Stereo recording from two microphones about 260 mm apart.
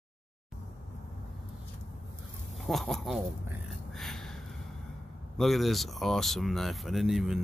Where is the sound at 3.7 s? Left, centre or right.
Centre.